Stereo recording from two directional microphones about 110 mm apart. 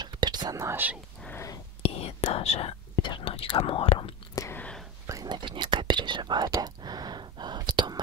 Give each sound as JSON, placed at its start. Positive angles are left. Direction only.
{"t": 0.0, "sound": "whispering", "side_deg": -40}
{"t": 0.7, "sound": "speech", "side_deg": -15}
{"t": 1.3, "sound": "whispering", "side_deg": 25}
{"t": 1.8, "sound": "whispering", "side_deg": 65}
{"t": 3.0, "sound": "speech", "side_deg": 45}
{"t": 4.6, "sound": "whispering", "side_deg": 10}
{"t": 5.0, "sound": "whispering", "side_deg": -35}